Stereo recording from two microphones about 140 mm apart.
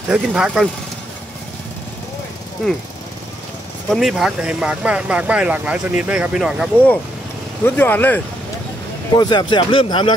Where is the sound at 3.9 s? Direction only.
Centre (ahead or behind).